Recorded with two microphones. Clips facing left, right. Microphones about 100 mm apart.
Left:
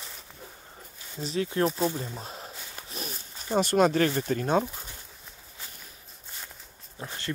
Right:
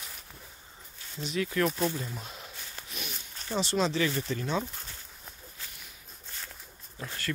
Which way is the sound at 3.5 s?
50° left (ahead or behind).